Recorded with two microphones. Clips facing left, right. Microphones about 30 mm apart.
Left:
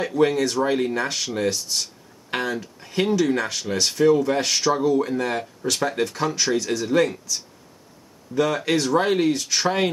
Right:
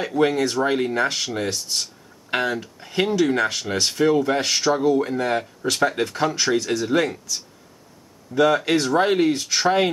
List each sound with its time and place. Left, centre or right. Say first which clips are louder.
0.0 s speech: even; centre
8.4 s speech: right 3 dB; centre